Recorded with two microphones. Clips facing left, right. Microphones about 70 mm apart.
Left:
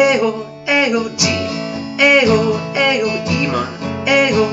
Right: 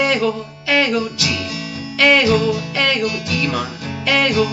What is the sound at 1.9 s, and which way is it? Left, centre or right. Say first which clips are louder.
Music: left 2 dB; centre.